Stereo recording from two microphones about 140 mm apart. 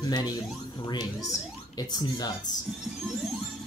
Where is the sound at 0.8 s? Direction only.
30° left (ahead or behind).